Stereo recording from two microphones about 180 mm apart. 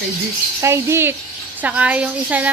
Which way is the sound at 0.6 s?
15° right (ahead or behind).